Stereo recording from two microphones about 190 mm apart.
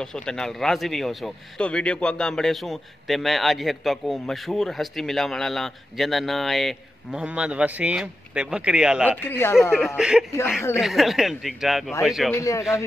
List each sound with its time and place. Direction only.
0.0 s a man's voice: 5° left (ahead or behind)
9.2 s speech: 10° left (ahead or behind)
9.6 s a man's voice: centre (ahead or behind)
12.4 s speech: 15° left (ahead or behind)